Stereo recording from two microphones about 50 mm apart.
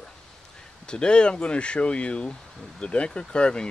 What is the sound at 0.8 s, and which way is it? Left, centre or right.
Speech, centre.